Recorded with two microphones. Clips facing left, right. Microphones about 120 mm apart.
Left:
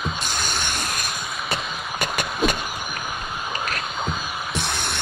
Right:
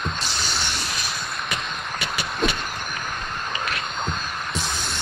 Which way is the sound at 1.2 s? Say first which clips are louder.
Left 1 dB; 5° left (ahead or behind).